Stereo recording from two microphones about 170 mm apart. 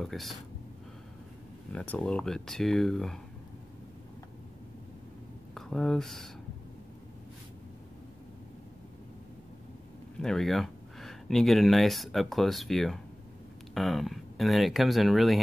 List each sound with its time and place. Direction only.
0.0 s speech: centre (ahead or behind)
1.7 s speech: 5° left (ahead or behind)
5.5 s speech: 5° left (ahead or behind)
10.2 s speech: centre (ahead or behind)